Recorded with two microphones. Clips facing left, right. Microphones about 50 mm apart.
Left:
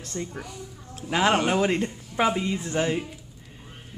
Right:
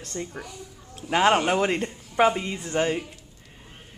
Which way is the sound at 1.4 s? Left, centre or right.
Centre.